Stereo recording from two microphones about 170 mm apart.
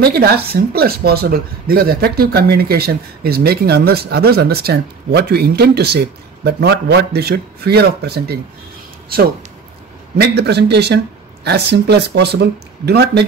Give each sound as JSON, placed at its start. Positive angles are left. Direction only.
{"t": 0.0, "sound": "speech", "side_deg": -70}
{"t": 10.1, "sound": "speech", "side_deg": -75}